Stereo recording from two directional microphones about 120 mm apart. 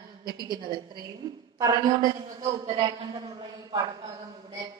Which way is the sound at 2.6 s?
50° right (ahead or behind).